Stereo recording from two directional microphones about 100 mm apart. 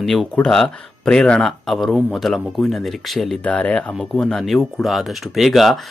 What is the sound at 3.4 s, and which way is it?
Speech, 15° left (ahead or behind).